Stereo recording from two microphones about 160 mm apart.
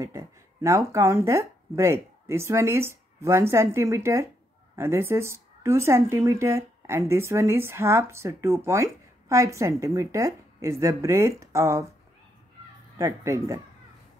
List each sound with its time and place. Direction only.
0.0 s speech: 20° right (ahead or behind)
12.9 s speech: 20° right (ahead or behind)